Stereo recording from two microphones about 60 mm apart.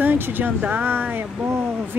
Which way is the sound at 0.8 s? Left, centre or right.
Right.